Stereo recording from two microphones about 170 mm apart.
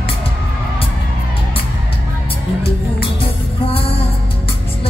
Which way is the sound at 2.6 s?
35° left (ahead or behind).